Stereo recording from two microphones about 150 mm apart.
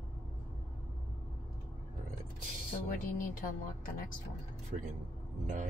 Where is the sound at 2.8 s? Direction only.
70° left (ahead or behind).